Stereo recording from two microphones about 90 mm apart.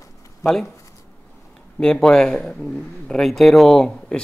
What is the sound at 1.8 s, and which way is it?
Speech, 10° left (ahead or behind).